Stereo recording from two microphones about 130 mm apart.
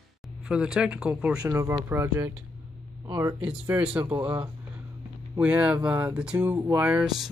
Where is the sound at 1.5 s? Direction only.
25° right (ahead or behind).